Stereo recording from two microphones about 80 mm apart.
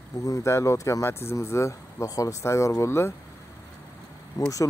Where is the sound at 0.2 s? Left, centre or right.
Left.